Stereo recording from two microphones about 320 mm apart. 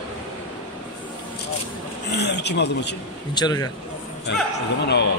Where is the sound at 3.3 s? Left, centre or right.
Centre.